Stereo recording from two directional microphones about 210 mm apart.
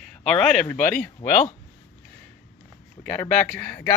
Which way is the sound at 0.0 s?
5° left (ahead or behind).